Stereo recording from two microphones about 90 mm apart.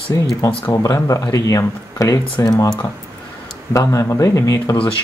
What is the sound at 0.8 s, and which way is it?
Speech, 35° left (ahead or behind).